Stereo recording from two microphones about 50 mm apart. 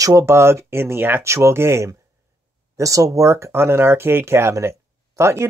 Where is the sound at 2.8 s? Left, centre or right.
Right.